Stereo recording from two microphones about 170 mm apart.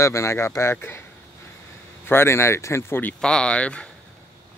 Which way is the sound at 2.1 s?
15° left (ahead or behind).